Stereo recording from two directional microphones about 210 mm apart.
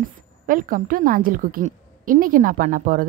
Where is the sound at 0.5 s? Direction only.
40° right (ahead or behind).